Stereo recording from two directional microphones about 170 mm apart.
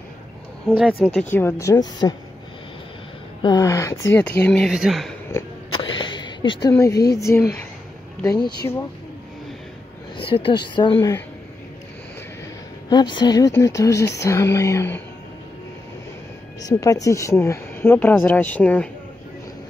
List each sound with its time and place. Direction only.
0.7 s speech: centre (ahead or behind)
1.3 s speech: 15° left (ahead or behind)
3.4 s speech: 20° left (ahead or behind); by 5.1 s centre (ahead or behind)
5.7 s a sound: 30° left (ahead or behind)
6.7 s speech: 20° left (ahead or behind)
10.1 s speech: 30° left (ahead or behind)
12.9 s speech: 25° left (ahead or behind)
16.6 s speech: 20° left (ahead or behind)